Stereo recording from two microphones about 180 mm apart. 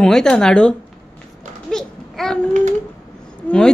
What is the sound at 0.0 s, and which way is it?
Speech, 5° left (ahead or behind).